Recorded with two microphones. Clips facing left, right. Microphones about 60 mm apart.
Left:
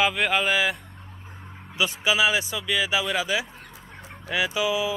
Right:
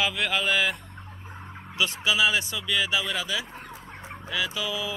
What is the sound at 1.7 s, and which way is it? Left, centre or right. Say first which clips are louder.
Speech: left 2 dB; centre.